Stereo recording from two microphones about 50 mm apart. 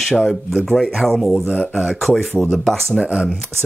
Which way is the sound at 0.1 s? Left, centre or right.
Centre.